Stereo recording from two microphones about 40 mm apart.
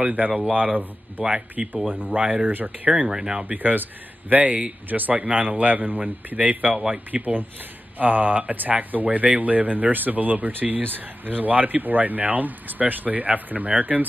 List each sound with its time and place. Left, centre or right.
0.0 s a man's voice: right
1.6 s speech: right
2.4 s speech: right
3.1 s speech: centre
3.5 s speech: right
5.2 s a man's voice: right